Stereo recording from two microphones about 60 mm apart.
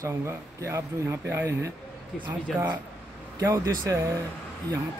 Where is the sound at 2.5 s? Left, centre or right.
Right.